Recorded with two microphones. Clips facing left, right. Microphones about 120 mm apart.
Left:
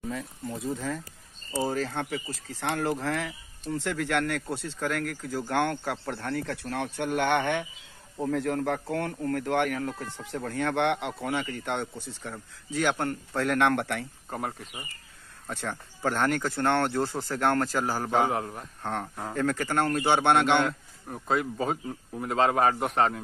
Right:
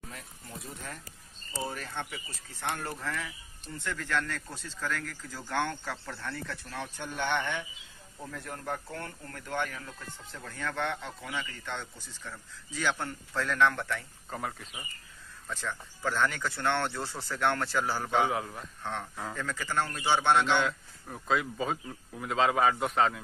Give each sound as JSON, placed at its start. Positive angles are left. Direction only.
{"t": 0.7, "sound": "speech", "side_deg": 90}
{"t": 8.2, "sound": "speech", "side_deg": 80}
{"t": 15.4, "sound": "speech", "side_deg": 55}